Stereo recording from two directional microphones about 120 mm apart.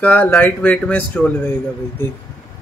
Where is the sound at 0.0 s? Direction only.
15° left (ahead or behind).